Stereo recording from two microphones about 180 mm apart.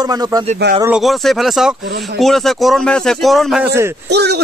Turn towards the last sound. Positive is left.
turn(degrees=-65)  # may be behind; listen again after turning